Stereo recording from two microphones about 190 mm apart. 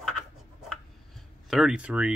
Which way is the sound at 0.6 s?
Centre (ahead or behind).